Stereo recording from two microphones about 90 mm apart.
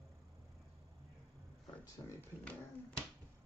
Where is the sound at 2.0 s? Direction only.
40° left (ahead or behind).